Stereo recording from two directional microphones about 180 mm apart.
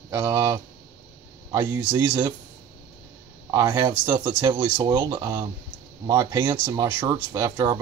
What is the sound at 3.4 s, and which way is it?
Speech, 20° right (ahead or behind).